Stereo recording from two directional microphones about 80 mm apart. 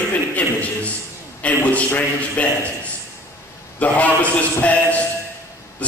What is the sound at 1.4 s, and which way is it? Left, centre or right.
A man's voice, centre.